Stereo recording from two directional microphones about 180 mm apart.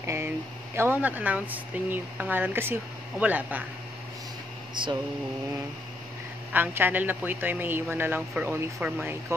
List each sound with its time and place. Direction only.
0.0 s a sound: 15° right (ahead or behind)
0.7 s speech: 10° right (ahead or behind)
4.8 s mantra: 25° right (ahead or behind)
6.5 s speech: 10° right (ahead or behind)